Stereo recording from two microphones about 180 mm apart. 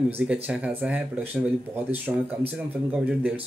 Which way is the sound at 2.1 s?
5° right (ahead or behind).